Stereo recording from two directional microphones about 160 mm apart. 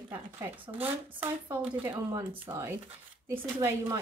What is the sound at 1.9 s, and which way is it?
Speech, 25° right (ahead or behind).